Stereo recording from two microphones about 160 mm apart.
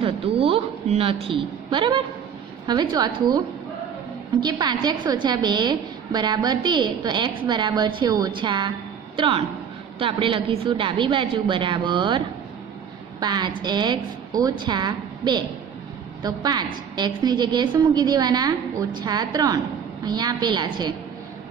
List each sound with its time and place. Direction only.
0.0 s a woman's voice: 35° right (ahead or behind)
4.4 s a woman's voice: 25° right (ahead or behind)
13.2 s a woman's voice: 25° right (ahead or behind)